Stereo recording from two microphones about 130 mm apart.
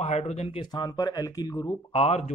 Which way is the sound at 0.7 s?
30° left (ahead or behind).